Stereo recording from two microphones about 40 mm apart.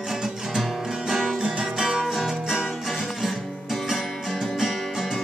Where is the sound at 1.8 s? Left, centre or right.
Centre.